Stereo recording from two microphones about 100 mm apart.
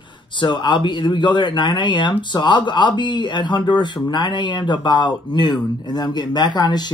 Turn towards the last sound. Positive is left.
turn(degrees=45)  # may be behind; listen again after turning